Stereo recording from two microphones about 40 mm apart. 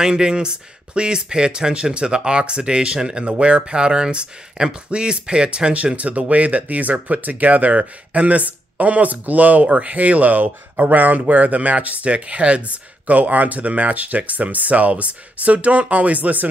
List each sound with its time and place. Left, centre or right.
0.0 s speech: centre; by 16.4 s right